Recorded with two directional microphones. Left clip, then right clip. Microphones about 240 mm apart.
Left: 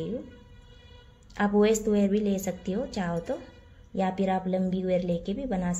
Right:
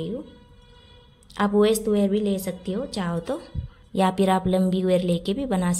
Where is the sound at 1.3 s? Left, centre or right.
Centre.